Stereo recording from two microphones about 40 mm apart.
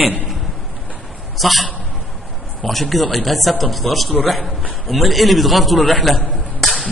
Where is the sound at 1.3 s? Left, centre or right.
Centre.